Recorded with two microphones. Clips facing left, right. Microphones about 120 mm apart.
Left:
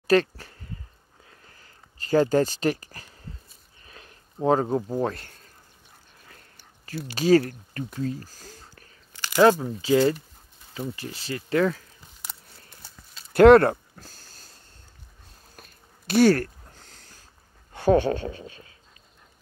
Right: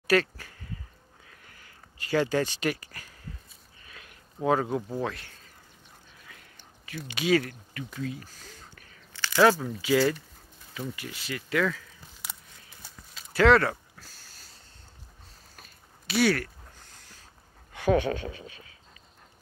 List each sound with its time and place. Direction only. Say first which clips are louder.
0.1 s speech: left 4 dB; 25° left (ahead or behind)
3.8 s a sound: left 2 dB; 30° left (ahead or behind)
5.0 s speech: left 5 dB; 45° left (ahead or behind)
7.1 s speech: left 6 dB; 40° left (ahead or behind)
9.3 s speech: left 3 dB; 20° left (ahead or behind)
13.3 s a sound: left 8 dB; 55° left (ahead or behind)
16.1 s speech: left 6 dB; 45° left (ahead or behind)
17.7 s speech: left 4 dB; 30° left (ahead or behind)